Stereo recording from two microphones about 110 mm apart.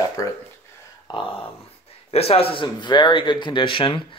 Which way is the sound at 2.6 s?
45° left (ahead or behind).